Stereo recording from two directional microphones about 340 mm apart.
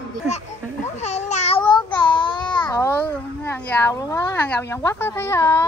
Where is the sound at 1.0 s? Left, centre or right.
Centre.